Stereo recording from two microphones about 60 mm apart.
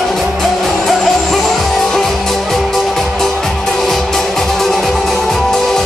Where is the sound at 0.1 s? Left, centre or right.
Centre.